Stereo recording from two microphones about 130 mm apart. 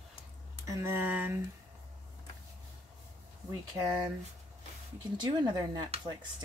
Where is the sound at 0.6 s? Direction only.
20° right (ahead or behind).